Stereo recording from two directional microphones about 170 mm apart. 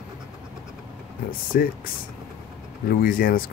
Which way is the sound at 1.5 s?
60° left (ahead or behind).